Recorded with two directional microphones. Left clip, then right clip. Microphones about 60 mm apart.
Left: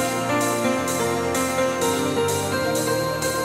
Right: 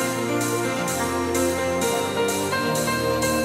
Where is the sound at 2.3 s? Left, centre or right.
Centre.